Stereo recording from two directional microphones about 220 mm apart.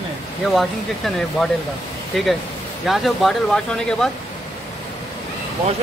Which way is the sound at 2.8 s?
Centre (ahead or behind).